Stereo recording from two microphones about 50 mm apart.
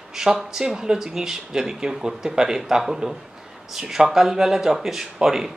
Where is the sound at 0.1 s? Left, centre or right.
Centre.